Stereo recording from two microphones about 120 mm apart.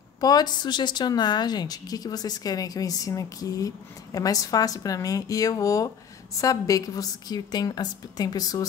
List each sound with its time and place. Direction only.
0.2 s a woman's voice: 35° left (ahead or behind)